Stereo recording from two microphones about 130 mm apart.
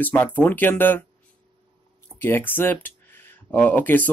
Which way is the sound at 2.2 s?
15° left (ahead or behind).